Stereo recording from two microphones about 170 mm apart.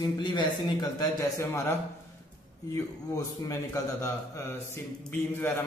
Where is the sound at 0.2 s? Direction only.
25° left (ahead or behind).